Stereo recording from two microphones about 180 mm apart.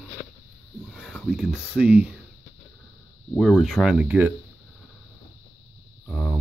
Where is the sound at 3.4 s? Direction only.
Centre (ahead or behind).